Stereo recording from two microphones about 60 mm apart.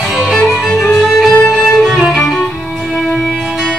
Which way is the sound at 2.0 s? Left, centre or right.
Centre.